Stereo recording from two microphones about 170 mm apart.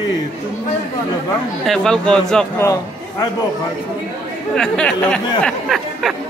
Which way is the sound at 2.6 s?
20° left (ahead or behind).